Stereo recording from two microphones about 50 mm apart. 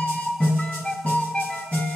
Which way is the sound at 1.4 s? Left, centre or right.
Left.